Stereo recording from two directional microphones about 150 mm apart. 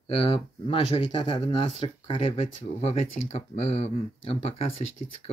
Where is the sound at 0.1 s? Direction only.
40° left (ahead or behind).